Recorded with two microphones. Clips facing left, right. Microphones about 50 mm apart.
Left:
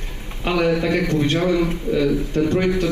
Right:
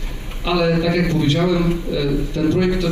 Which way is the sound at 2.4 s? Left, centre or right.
Left.